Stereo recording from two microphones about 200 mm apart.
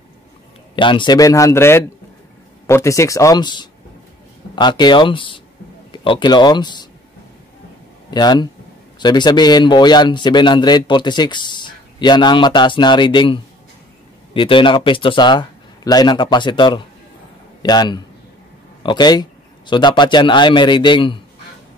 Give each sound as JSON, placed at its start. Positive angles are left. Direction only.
{"t": 0.7, "sound": "a man's voice", "side_deg": 25}
{"t": 8.1, "sound": "a man's voice", "side_deg": 20}